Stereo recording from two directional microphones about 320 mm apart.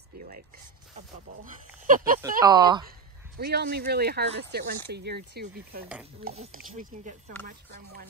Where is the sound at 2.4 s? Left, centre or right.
Centre.